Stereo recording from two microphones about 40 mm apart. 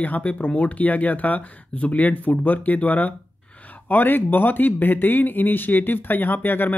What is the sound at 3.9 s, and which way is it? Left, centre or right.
Speech, left.